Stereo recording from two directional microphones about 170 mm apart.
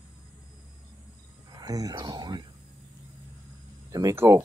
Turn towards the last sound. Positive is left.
turn(degrees=-15)  # may be behind; listen again after turning